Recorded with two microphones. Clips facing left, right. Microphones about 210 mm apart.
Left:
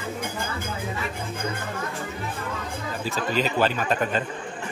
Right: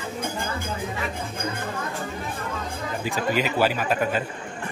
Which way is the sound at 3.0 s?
15° right (ahead or behind).